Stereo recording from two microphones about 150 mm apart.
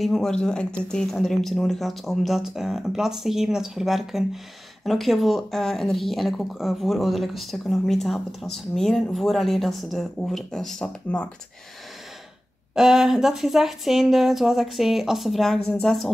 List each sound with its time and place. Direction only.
0.0 s speech: centre (ahead or behind)
12.7 s speech: 5° right (ahead or behind)